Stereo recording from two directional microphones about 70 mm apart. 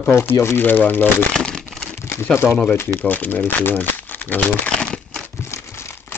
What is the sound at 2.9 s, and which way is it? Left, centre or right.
Speech, left.